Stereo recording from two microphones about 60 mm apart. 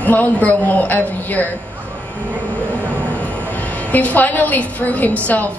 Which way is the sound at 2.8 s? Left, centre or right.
Left.